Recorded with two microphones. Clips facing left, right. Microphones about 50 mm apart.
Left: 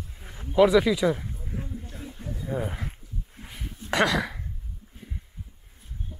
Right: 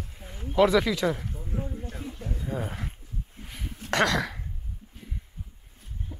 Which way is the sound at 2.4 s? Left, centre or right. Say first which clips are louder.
Left 3 dB; centre.